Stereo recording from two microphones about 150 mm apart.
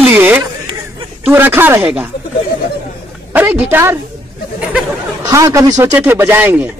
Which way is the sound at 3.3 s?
10° right (ahead or behind).